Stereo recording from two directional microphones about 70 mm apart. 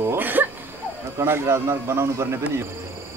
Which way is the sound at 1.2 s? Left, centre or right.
Right.